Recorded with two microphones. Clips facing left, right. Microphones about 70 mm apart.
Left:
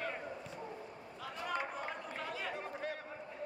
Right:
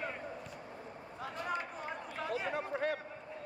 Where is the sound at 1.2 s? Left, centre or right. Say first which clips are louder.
Right 2 dB; right.